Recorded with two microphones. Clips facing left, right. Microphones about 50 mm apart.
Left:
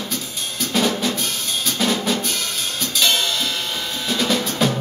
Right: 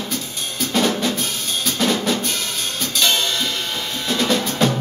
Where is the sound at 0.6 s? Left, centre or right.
Centre.